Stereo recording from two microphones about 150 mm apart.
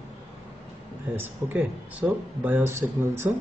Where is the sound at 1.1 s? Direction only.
10° right (ahead or behind).